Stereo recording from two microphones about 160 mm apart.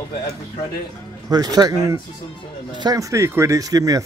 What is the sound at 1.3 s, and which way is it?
Speech, 25° right (ahead or behind).